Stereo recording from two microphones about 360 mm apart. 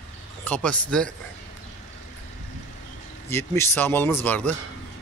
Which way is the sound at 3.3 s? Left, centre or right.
Centre.